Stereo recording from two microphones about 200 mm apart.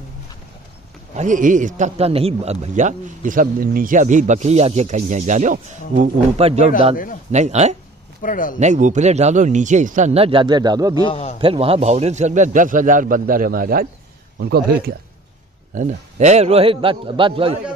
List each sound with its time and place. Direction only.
1.1 s speech: 40° right (ahead or behind)
8.2 s speech: 45° left (ahead or behind)
8.5 s speech: 35° right (ahead or behind); by 11.0 s 20° right (ahead or behind)
11.0 s a man's voice: 30° left (ahead or behind)
11.3 s speech: 25° right (ahead or behind); by 15.0 s 50° right (ahead or behind)
15.7 s speech: 35° right (ahead or behind)